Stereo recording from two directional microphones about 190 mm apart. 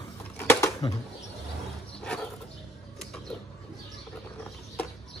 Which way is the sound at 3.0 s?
Centre (ahead or behind).